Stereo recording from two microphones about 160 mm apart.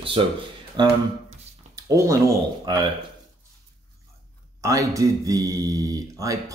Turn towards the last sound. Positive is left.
turn(degrees=-20)  # may be behind; listen again after turning